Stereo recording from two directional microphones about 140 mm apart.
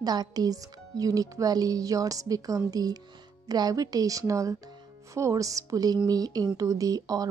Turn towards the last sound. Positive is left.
turn(degrees=-25)  # may be behind; listen again after turning